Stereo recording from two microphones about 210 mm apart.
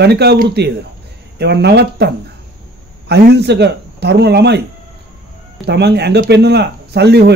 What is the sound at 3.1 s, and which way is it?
Speech, 55° right (ahead or behind).